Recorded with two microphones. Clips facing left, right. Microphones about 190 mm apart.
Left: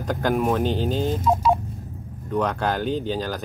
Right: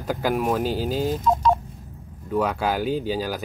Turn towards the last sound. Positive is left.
turn(degrees=-10)  # may be behind; listen again after turning